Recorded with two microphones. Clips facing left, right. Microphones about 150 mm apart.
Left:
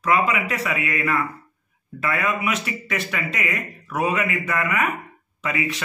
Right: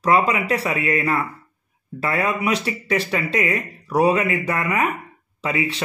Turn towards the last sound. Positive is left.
turn(degrees=-30)  # may be behind; listen again after turning